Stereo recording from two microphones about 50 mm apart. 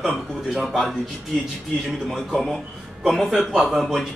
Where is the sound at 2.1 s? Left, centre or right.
Centre.